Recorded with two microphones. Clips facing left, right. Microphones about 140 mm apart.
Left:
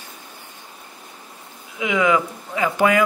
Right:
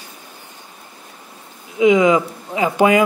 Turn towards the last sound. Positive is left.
turn(degrees=-20)  # may be behind; listen again after turning